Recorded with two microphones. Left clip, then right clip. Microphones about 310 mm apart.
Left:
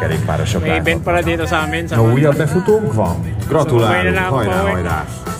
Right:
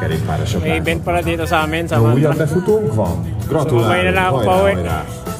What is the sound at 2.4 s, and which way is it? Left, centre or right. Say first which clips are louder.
Speech: left 1 dB; centre.